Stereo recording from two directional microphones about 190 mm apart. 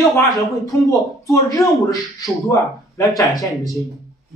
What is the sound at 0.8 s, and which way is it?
Speech, 15° left (ahead or behind).